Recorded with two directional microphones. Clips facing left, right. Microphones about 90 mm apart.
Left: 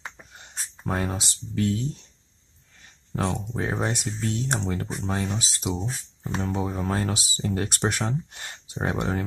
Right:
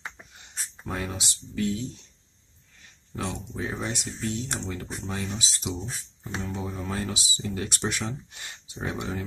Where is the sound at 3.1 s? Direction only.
55° left (ahead or behind).